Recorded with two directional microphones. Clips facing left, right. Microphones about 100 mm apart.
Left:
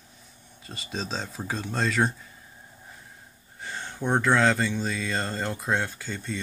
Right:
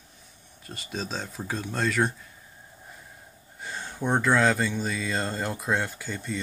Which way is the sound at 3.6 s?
5° right (ahead or behind).